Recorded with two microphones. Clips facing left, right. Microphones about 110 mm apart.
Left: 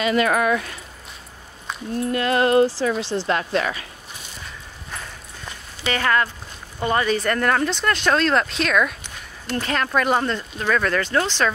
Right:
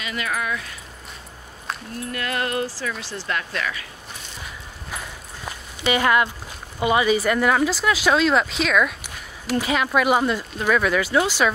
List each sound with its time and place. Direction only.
0.0 s speech: 45° left (ahead or behind)
2.0 s music: 30° left (ahead or behind)
4.9 s clip-clop: 15° right (ahead or behind)
5.9 s speech: 15° right (ahead or behind)